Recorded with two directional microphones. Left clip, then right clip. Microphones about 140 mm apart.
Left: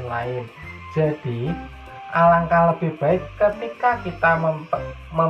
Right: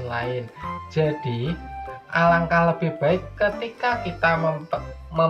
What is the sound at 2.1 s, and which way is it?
Speech, 15° left (ahead or behind).